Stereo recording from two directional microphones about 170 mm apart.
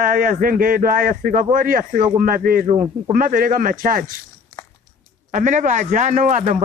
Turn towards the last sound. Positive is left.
turn(degrees=-45)  # may be behind; listen again after turning